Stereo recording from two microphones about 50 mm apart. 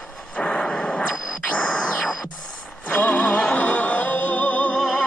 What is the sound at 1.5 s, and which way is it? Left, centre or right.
Music, centre.